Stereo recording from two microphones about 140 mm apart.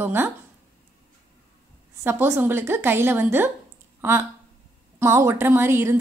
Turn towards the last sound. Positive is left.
turn(degrees=-15)  # may be behind; listen again after turning